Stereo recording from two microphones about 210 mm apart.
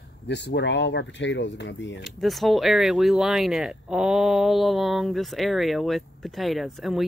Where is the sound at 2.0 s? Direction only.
Centre (ahead or behind).